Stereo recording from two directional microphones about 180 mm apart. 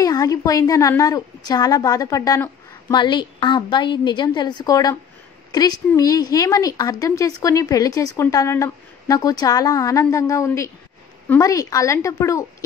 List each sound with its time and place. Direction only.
0.0 s a woman's voice: 20° left (ahead or behind)